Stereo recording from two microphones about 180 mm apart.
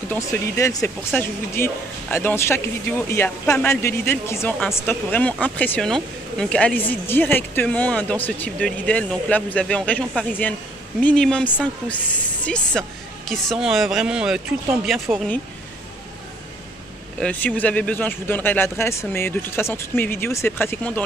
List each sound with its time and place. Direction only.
0.1 s speech: 15° left (ahead or behind); by 15.3 s centre (ahead or behind)
17.2 s speech: 10° left (ahead or behind)